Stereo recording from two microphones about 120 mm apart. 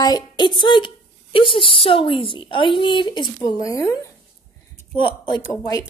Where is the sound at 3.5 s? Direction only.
30° left (ahead or behind).